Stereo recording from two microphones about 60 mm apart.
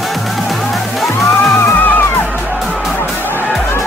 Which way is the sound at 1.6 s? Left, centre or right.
Left.